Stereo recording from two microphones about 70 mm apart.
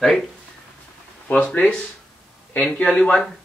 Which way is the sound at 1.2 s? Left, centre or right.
Left.